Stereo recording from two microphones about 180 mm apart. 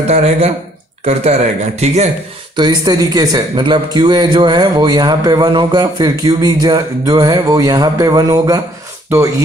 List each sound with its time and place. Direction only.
0.0 s speech: 40° right (ahead or behind)
2.5 s a man's voice: 25° right (ahead or behind)